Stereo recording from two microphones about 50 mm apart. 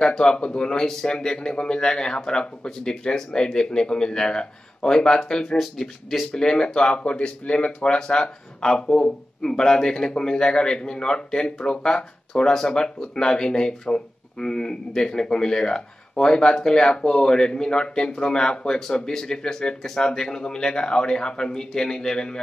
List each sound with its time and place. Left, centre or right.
0.0 s speech: centre